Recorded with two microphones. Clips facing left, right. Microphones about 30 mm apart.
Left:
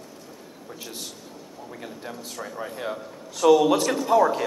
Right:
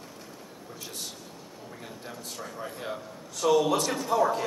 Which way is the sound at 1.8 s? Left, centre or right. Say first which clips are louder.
Left 5 dB; centre.